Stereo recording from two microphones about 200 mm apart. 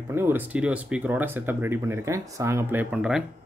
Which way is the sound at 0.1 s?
10° right (ahead or behind).